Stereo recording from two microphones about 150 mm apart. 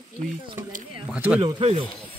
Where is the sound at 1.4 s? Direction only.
40° right (ahead or behind).